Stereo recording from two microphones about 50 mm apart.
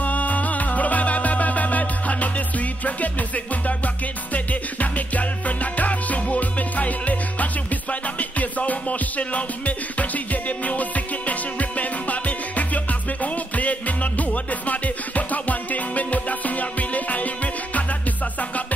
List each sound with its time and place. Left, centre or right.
0.0 s music: left